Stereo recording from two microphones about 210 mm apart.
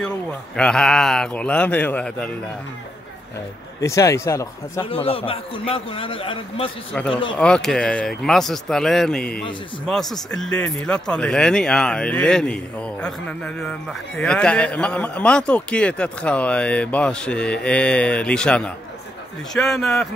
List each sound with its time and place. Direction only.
0.0 s speech: 5° left (ahead or behind)
3.8 s speech: 15° left (ahead or behind)
4.8 s a man's voice: 25° left (ahead or behind)
7.3 s speech: 5° left (ahead or behind)